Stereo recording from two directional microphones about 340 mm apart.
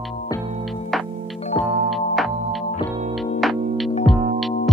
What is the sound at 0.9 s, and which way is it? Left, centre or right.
Music, centre.